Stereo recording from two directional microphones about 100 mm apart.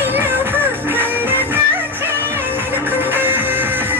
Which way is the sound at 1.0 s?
20° right (ahead or behind).